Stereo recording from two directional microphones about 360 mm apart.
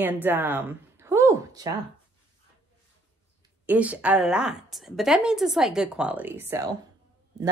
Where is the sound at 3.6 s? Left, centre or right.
Centre.